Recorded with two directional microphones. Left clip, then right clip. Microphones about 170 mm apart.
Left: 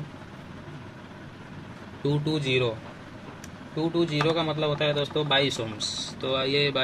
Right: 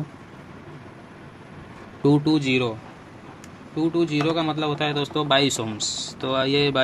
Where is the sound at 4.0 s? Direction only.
90° right.